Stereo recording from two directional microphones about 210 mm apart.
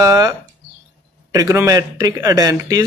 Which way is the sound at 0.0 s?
15° right (ahead or behind).